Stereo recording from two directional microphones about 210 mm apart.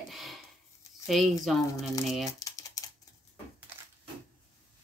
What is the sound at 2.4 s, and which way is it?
Typing, 15° left (ahead or behind).